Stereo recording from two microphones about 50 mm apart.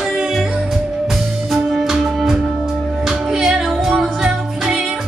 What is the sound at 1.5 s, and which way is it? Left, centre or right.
Music, centre.